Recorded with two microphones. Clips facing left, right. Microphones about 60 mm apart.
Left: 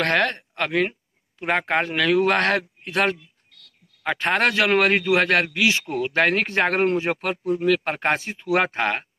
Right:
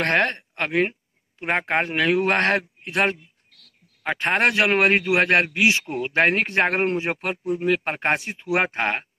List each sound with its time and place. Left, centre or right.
0.0 s a man's voice: right
4.2 s a man's voice: right